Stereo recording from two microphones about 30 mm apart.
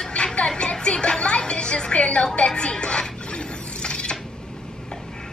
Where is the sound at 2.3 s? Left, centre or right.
Left.